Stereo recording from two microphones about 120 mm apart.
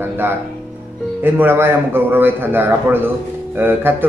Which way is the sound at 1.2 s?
20° right (ahead or behind).